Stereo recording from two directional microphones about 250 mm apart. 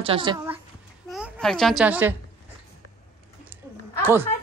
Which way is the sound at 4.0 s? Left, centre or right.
Centre.